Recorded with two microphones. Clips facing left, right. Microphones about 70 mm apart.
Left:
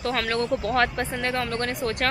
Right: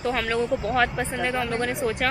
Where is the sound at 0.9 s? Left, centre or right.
Centre.